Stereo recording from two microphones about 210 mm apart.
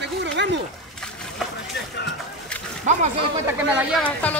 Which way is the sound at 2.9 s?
35° right (ahead or behind).